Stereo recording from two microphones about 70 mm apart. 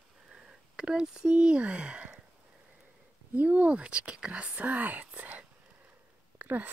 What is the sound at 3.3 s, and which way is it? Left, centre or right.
Speech, right.